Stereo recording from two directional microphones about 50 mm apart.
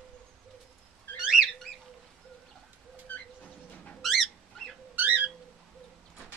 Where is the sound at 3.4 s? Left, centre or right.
Left.